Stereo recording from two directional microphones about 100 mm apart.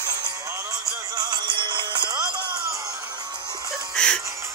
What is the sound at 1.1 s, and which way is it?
Music, 40° right (ahead or behind).